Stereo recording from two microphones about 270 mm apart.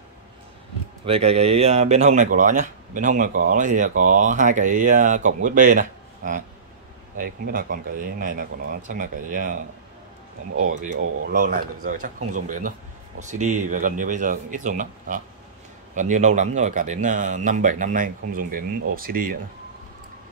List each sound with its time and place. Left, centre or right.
1.0 s speech: right
10.8 s speech: right